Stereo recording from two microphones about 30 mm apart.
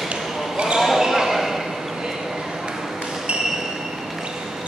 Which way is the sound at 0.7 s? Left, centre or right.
Centre.